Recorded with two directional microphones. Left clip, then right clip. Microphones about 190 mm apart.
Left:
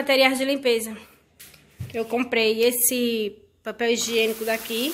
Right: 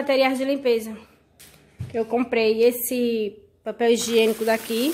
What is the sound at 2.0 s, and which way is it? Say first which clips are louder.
Speech: right 1 dB; 5° right (ahead or behind).